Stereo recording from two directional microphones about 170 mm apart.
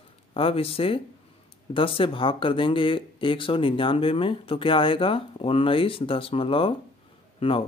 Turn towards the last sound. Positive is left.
turn(degrees=35)  # may be behind; listen again after turning